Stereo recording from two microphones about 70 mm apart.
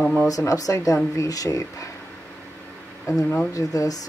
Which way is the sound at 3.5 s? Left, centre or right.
Left.